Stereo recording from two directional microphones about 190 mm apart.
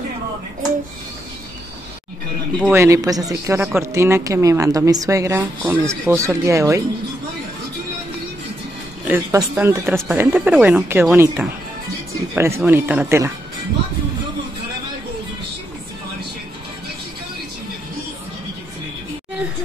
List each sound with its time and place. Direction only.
2.7 s a woman's voice: 15° right (ahead or behind)
9.0 s a woman's voice: 10° right (ahead or behind)